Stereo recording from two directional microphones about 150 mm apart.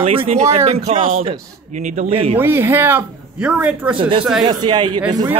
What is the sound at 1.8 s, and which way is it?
Speech, 55° right (ahead or behind).